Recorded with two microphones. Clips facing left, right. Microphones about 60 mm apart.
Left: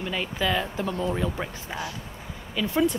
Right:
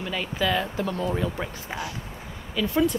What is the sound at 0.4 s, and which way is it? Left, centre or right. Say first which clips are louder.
Speech: right 2 dB; left.